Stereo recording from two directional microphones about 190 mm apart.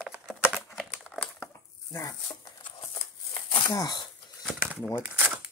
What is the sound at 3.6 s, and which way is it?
Speech, 20° left (ahead or behind).